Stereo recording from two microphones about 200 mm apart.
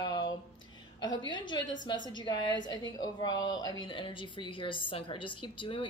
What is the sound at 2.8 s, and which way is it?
A woman's voice, 20° left (ahead or behind).